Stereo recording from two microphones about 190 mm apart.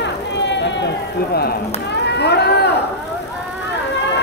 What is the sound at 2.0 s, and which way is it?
Run, 60° left (ahead or behind).